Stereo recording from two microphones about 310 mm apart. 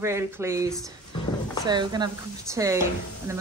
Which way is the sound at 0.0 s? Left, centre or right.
Centre.